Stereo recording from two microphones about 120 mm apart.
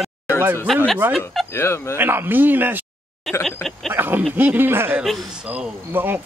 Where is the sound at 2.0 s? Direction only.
15° right (ahead or behind).